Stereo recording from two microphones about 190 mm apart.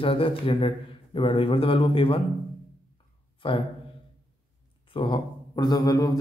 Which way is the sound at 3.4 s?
30° left (ahead or behind).